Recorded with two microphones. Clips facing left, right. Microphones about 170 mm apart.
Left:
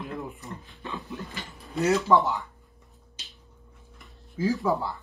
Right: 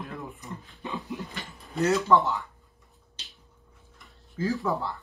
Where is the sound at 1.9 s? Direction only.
Centre (ahead or behind).